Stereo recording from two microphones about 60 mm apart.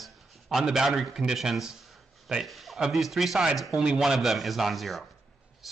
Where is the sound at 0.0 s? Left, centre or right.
Centre.